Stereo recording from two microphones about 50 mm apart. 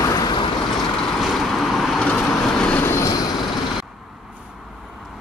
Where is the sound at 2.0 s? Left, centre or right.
Centre.